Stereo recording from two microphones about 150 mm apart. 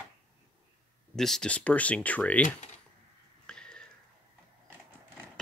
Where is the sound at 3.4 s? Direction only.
5° left (ahead or behind).